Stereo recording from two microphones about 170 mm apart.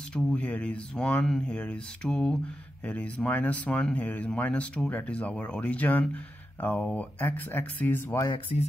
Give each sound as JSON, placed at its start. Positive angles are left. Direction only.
{"t": 0.1, "sound": "speech", "side_deg": 5}